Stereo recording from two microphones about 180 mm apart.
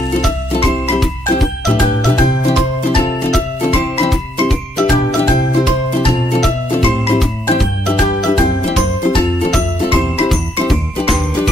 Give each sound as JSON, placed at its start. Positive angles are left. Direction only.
{"t": 0.6, "sound": "music", "side_deg": 35}
{"t": 3.6, "sound": "music", "side_deg": 30}
{"t": 8.3, "sound": "jingle", "side_deg": 35}